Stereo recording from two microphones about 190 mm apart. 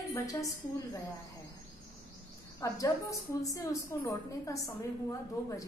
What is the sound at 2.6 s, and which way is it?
A woman's voice, 15° left (ahead or behind).